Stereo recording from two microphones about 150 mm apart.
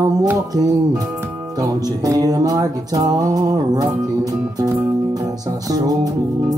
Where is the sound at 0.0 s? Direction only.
25° right (ahead or behind).